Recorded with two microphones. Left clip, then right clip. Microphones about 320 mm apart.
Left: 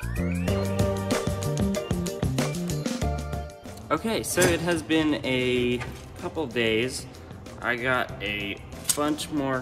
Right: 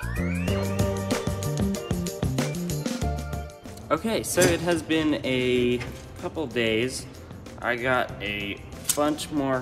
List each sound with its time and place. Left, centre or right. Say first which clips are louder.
0.0 s music: right 1 dB; centre
3.9 s a man's voice: right 1 dB; centre